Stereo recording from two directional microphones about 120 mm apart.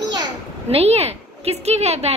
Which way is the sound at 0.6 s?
60° right (ahead or behind).